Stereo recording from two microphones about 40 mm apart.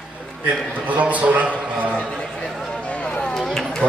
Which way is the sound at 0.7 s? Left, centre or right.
Right.